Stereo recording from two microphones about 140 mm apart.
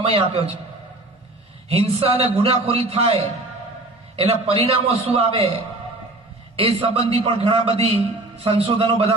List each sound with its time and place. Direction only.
0.0 s a man's voice: 45° right (ahead or behind)
1.7 s a man's voice: 45° right (ahead or behind)
4.2 s a man's voice: 45° right (ahead or behind)
6.5 s a man's voice: 45° right (ahead or behind)